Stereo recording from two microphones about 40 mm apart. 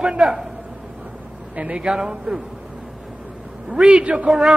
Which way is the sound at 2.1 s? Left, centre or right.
Right.